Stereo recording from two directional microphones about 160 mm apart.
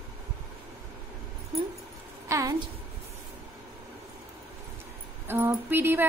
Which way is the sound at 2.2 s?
20° right (ahead or behind).